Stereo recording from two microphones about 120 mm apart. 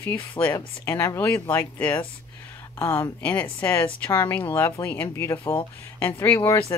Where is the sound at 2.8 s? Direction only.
25° left (ahead or behind).